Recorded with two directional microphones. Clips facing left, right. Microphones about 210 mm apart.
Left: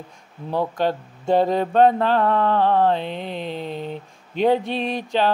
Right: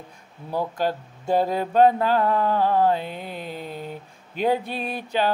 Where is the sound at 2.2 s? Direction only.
65° left (ahead or behind).